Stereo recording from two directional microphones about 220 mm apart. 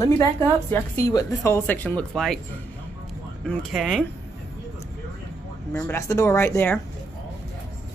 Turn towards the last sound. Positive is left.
turn(degrees=10)  # may be behind; listen again after turning